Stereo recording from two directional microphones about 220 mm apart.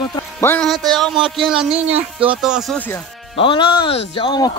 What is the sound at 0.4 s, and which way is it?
Speech, 5° left (ahead or behind).